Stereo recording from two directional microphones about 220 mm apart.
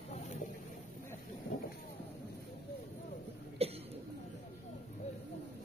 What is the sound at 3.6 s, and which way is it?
Cough, 25° right (ahead or behind).